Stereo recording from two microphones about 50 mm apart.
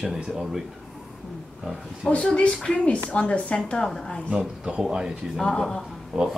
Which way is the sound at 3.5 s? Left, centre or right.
Centre.